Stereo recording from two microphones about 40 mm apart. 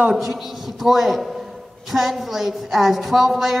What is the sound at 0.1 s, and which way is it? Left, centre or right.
A woman's voice, centre.